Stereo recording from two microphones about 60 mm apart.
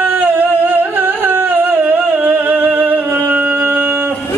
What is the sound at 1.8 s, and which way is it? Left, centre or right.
Music, right.